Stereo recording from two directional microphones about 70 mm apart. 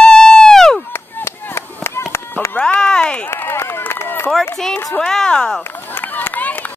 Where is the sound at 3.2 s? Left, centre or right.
Left.